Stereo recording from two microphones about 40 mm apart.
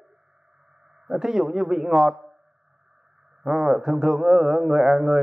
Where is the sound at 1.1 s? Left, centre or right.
Centre.